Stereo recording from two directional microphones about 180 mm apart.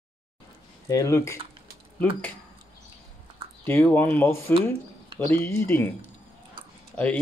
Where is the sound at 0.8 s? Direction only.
20° left (ahead or behind).